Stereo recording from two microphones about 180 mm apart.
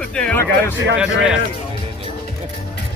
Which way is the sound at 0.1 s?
5° left (ahead or behind).